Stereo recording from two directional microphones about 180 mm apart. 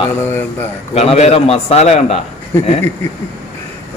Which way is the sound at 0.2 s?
10° left (ahead or behind).